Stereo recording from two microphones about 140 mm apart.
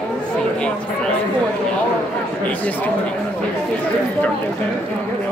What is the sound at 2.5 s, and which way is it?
Speech, 10° left (ahead or behind).